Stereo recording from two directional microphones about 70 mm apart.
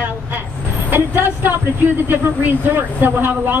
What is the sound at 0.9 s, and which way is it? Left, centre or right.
Speech, right.